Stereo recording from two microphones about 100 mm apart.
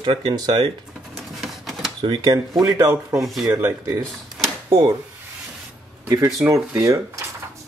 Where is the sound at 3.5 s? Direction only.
25° right (ahead or behind).